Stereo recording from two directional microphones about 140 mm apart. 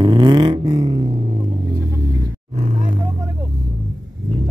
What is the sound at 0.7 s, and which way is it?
Vehicle, 55° right (ahead or behind).